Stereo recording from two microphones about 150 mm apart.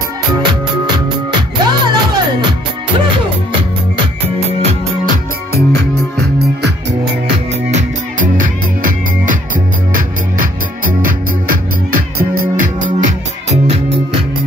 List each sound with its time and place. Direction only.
0.3 s music: 30° right (ahead or behind)
5.0 s music: 90° right
7.7 s music: 65° right (ahead or behind)